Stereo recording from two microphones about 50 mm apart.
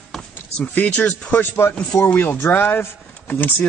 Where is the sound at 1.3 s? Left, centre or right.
Left.